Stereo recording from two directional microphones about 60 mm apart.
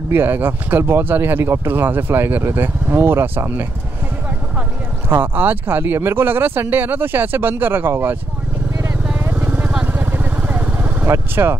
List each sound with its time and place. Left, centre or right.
0.1 s speech: right
5.1 s speech: right
9.3 s vehicle: right
11.1 s speech: right